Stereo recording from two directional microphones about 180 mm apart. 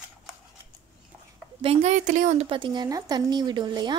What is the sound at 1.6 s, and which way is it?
Speech, 35° right (ahead or behind).